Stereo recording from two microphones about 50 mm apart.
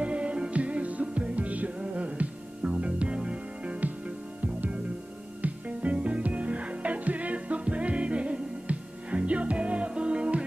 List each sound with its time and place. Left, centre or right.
0.0 s music: right
5.4 s music: right